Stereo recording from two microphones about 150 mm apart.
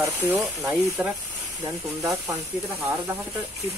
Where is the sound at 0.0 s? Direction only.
20° right (ahead or behind).